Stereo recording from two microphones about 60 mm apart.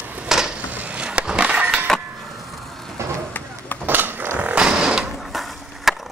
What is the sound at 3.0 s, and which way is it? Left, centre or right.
Vehicle, right.